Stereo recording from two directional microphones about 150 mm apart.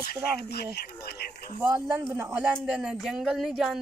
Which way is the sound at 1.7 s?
20° right (ahead or behind).